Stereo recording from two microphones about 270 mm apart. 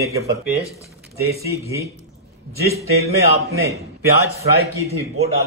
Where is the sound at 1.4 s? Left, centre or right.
Centre.